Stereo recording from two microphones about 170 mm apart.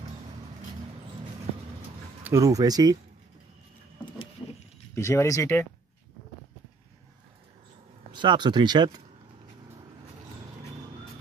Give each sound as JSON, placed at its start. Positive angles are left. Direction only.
{"t": 2.2, "sound": "speech", "side_deg": -20}
{"t": 4.9, "sound": "speech", "side_deg": 15}
{"t": 8.1, "sound": "speech", "side_deg": -25}